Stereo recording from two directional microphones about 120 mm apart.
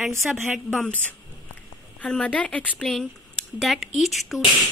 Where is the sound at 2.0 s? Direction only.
10° left (ahead or behind).